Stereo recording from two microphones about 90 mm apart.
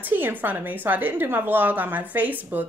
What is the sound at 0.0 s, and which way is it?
Speech, 20° right (ahead or behind).